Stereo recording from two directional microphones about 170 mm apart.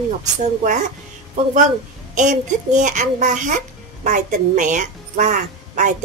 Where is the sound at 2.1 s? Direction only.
45° right (ahead or behind).